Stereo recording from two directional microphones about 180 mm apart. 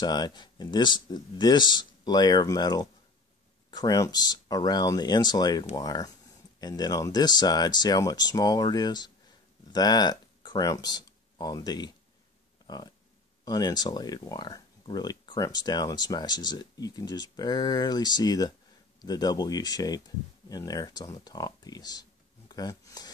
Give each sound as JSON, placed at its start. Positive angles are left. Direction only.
{"t": 0.0, "sound": "speech", "side_deg": 25}